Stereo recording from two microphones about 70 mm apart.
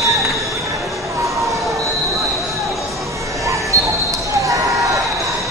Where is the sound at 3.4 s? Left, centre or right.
Right.